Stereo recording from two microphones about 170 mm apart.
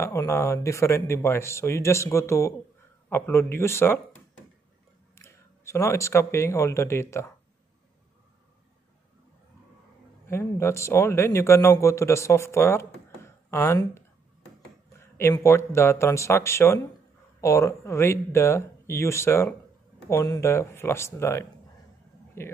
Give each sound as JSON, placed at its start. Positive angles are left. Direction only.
{"t": 0.0, "sound": "speech", "side_deg": 15}
{"t": 5.1, "sound": "speech", "side_deg": 15}
{"t": 10.2, "sound": "speech", "side_deg": 15}
{"t": 14.9, "sound": "a sound", "side_deg": 15}
{"t": 15.3, "sound": "speech", "side_deg": 15}